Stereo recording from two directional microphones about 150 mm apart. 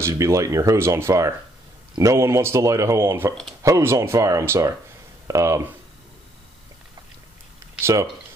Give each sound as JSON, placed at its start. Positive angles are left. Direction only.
{"t": 0.0, "sound": "speech", "side_deg": -20}
{"t": 7.8, "sound": "speech", "side_deg": -20}